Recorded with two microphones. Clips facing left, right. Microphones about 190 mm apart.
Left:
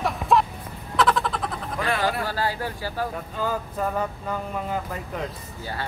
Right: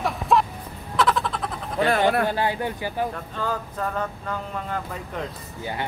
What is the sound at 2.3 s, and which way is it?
Speech, 20° right (ahead or behind).